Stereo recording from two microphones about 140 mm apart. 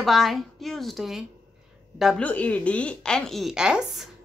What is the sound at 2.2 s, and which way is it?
A woman's voice, 10° left (ahead or behind).